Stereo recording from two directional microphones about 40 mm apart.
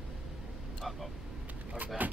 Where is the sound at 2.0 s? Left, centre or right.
Right.